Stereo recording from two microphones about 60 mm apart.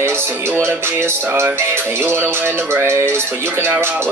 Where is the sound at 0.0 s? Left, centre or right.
Right.